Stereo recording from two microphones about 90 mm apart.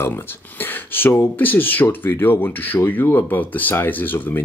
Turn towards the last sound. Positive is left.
turn(degrees=20)  # may be behind; listen again after turning